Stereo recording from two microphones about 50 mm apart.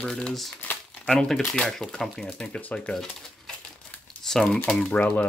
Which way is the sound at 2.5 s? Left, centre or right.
Left.